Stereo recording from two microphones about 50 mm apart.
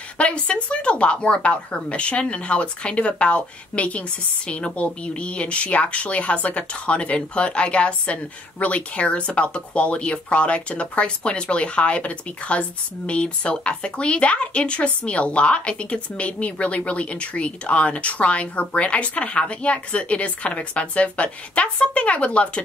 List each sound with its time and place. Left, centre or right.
0.2 s speech: left